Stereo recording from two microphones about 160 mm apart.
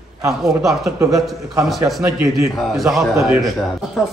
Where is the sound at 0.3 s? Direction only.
Centre (ahead or behind).